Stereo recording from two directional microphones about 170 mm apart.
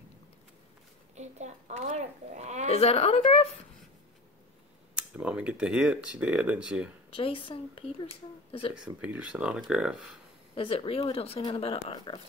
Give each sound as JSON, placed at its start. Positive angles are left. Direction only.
{"t": 1.1, "sound": "a child's voice", "side_deg": -40}
{"t": 2.7, "sound": "speech", "side_deg": 35}
{"t": 4.9, "sound": "speech", "side_deg": -5}
{"t": 7.2, "sound": "speech", "side_deg": 30}
{"t": 8.7, "sound": "speech", "side_deg": -5}
{"t": 10.5, "sound": "speech", "side_deg": 30}